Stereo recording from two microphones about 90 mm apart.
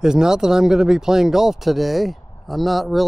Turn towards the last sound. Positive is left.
turn(degrees=0)  # may be behind; listen again after turning